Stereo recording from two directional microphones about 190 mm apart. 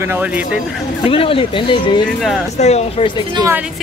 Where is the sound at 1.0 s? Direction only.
30° left (ahead or behind).